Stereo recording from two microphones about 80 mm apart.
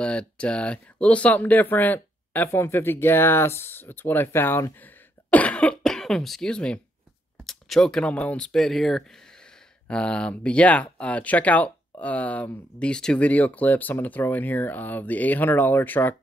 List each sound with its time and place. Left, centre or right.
0.0 s speech: centre; by 4.7 s left
4.7 s cough: left
5.8 s speech: centre; by 16.2 s left